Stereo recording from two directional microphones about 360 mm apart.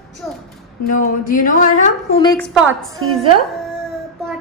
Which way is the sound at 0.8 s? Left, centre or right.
Left.